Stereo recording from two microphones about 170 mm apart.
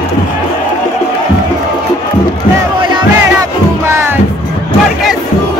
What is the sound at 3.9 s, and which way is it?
Music, 15° right (ahead or behind).